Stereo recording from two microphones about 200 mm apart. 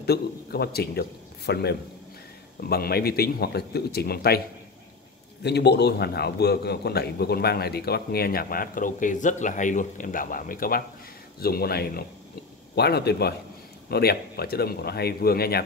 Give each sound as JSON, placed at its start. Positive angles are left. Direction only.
{"t": 0.0, "sound": "a man's voice", "side_deg": 55}
{"t": 5.4, "sound": "a man's voice", "side_deg": 55}